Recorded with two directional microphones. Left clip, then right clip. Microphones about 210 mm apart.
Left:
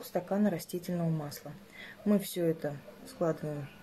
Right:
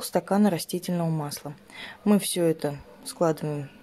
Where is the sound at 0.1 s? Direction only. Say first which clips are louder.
Right 8 dB; 45° right (ahead or behind).